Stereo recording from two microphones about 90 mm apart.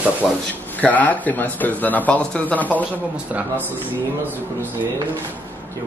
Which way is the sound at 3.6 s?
20° left (ahead or behind).